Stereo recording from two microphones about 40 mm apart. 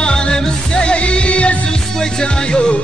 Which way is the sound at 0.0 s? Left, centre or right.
Left.